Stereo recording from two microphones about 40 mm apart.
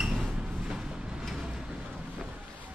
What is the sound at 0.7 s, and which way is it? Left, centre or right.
Vehicle, centre.